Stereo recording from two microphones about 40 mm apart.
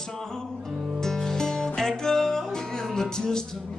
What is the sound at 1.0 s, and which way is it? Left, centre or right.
Music, centre.